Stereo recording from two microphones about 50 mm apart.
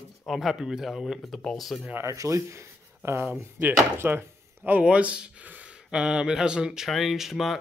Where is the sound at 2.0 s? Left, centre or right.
Right.